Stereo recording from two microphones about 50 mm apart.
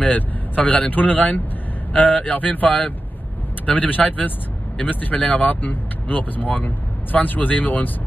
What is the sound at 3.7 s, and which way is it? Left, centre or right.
Speech, left.